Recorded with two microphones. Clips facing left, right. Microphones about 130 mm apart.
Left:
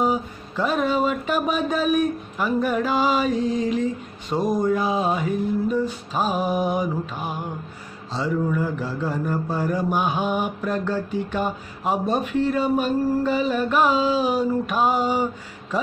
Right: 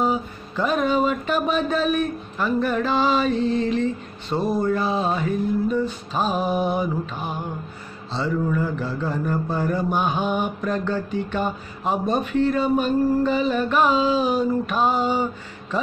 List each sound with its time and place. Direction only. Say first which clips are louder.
0.0 s speech: even; 10° left (ahead or behind)